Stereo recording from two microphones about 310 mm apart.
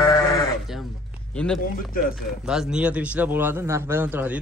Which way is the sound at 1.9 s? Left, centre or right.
Left.